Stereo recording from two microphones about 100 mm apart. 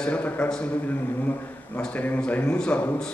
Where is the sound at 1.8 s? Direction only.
15° left (ahead or behind).